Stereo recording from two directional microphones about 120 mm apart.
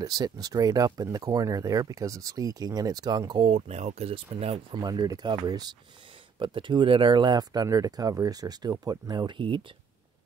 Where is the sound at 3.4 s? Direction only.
55° right (ahead or behind).